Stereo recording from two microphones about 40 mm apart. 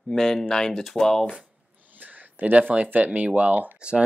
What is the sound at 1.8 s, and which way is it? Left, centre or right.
Speech, right.